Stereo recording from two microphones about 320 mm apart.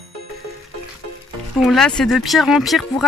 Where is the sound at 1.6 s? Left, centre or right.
Centre.